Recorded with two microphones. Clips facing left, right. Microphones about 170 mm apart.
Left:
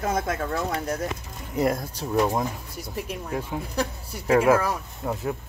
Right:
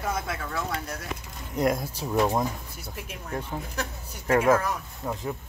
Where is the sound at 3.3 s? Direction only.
10° left (ahead or behind).